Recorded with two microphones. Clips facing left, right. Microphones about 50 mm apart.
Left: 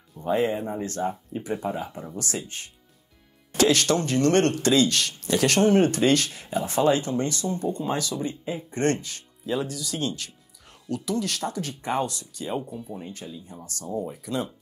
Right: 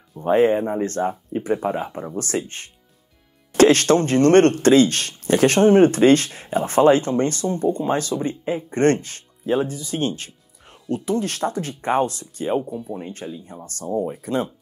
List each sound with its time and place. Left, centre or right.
0.2 s speech: right